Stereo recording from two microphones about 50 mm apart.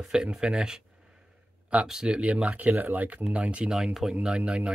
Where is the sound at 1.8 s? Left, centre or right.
Centre.